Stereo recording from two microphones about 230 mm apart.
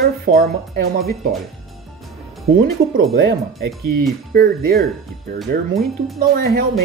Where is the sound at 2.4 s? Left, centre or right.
Right.